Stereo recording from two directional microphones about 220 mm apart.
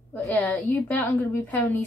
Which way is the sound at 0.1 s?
5° left (ahead or behind).